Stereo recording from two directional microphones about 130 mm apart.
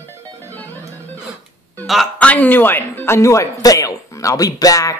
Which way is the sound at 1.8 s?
Centre (ahead or behind).